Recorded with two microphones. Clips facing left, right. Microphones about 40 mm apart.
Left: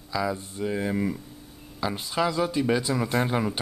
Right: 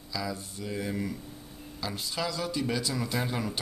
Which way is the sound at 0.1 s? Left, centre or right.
Left.